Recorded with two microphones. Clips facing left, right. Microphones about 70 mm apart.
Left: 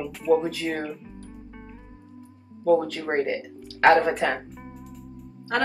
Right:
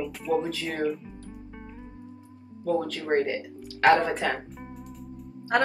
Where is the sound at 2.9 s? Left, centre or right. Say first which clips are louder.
Even; centre.